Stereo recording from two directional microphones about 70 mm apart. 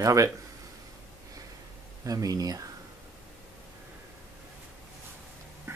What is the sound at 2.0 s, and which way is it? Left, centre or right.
Speech, right.